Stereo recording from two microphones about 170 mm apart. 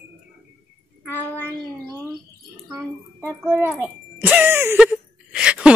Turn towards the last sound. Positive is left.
turn(degrees=-5)  # may be behind; listen again after turning